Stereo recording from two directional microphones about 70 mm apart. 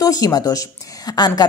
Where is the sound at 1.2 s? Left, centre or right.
Left.